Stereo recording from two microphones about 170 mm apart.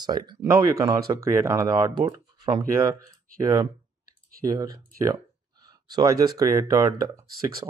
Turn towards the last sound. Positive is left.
turn(degrees=-20)  # may be behind; listen again after turning